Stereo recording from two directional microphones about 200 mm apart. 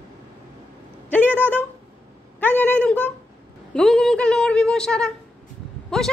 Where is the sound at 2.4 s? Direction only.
10° left (ahead or behind).